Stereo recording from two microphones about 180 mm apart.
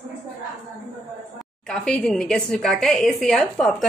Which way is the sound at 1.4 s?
5° left (ahead or behind).